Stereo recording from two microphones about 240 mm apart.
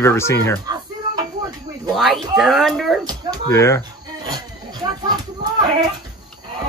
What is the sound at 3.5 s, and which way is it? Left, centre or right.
Speech, centre.